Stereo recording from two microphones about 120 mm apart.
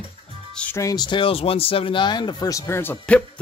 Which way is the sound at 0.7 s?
30° left (ahead or behind).